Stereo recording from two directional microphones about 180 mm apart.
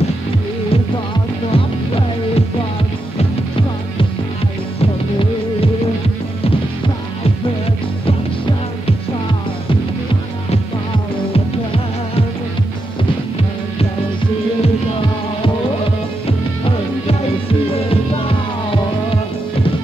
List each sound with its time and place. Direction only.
1.5 s music: 30° left (ahead or behind)
16.3 s music: 30° left (ahead or behind)